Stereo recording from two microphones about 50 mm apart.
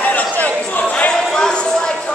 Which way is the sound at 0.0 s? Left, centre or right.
Left.